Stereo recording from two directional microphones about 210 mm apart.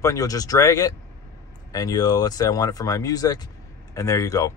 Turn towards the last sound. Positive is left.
turn(degrees=15)  # may be behind; listen again after turning